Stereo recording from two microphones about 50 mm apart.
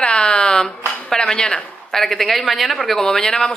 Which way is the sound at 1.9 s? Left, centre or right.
Centre.